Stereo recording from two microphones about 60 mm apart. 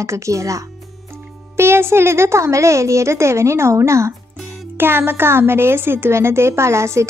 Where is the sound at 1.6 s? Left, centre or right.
Right.